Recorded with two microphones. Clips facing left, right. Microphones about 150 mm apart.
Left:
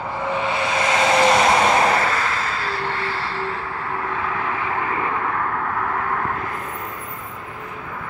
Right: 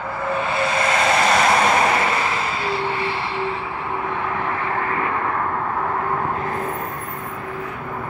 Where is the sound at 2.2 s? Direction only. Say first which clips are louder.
Right 1 dB; 15° right (ahead or behind).